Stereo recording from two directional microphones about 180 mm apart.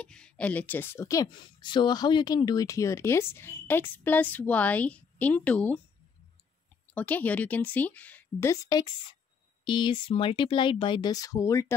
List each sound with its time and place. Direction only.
0.0 s speech: 5° left (ahead or behind)
6.9 s speech: 10° left (ahead or behind)